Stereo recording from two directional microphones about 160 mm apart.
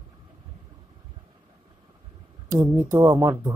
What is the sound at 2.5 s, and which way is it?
Speech, 15° right (ahead or behind).